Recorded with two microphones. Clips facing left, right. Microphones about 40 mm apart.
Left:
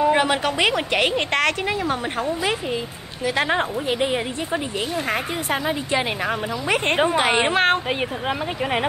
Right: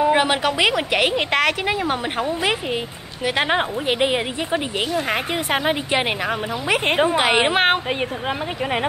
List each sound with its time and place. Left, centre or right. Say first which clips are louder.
0.0 s a woman's voice: right 1 dB; centre
1.7 s a woman's voice: right 2 dB; right
6.2 s a woman's voice: right 1 dB; centre
7.3 s a woman's voice: right 1 dB; right